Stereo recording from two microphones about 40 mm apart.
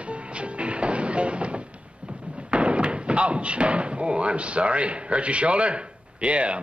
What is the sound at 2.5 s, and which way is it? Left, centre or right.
Speech, right.